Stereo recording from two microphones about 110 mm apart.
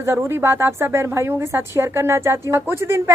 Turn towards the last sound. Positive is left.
turn(degrees=-25)  # may be behind; listen again after turning